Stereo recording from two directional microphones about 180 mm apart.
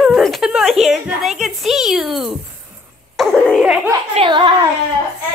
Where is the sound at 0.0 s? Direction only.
Centre (ahead or behind).